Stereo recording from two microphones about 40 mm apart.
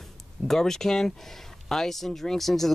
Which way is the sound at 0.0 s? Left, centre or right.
Centre.